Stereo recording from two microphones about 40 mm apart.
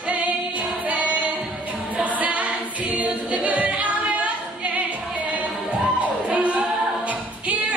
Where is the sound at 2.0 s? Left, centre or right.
Right.